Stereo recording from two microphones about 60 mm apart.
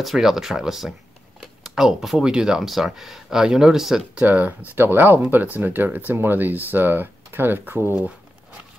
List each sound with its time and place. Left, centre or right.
0.0 s speech: centre
4.3 s speech: right